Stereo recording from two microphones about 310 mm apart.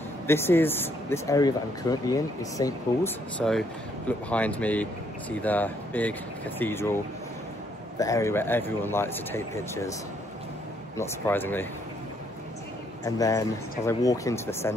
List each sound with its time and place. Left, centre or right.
0.3 s speech: centre
8.0 s speech: centre
11.0 s speech: centre
13.0 s speech: centre